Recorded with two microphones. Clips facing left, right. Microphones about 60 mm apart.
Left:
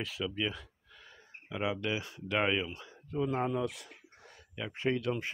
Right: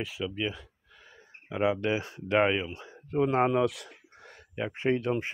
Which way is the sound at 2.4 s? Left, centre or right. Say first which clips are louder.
Right 4 dB; centre.